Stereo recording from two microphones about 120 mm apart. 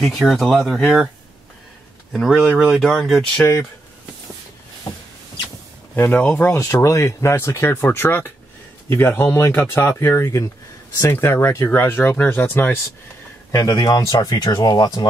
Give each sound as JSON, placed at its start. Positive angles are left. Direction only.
{"t": 0.0, "sound": "speech", "side_deg": 0}
{"t": 2.1, "sound": "speech", "side_deg": 0}
{"t": 5.9, "sound": "speech", "side_deg": 15}
{"t": 13.5, "sound": "speech", "side_deg": 30}